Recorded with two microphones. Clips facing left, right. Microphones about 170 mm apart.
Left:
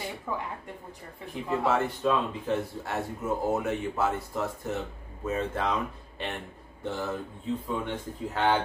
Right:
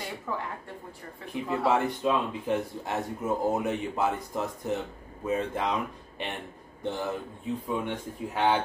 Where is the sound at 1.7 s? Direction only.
15° right (ahead or behind).